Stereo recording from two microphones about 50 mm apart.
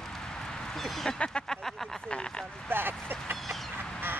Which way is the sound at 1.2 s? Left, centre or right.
Centre.